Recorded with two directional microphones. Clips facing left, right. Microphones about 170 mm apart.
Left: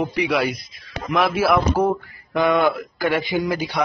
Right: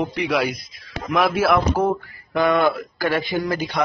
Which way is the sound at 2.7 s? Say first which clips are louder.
Even; centre (ahead or behind).